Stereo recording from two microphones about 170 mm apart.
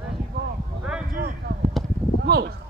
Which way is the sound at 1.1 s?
60° right (ahead or behind).